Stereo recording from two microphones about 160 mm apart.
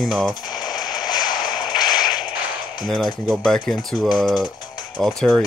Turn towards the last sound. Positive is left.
turn(degrees=0)  # may be behind; listen again after turning